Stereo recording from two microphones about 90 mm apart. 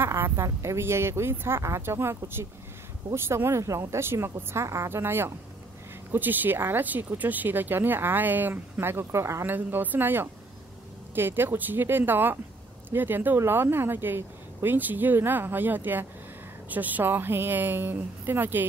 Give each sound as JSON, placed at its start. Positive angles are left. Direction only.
{"t": 0.0, "sound": "speech", "side_deg": -30}